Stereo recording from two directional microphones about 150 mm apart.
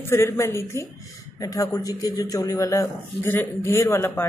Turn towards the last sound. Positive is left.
turn(degrees=15)  # may be behind; listen again after turning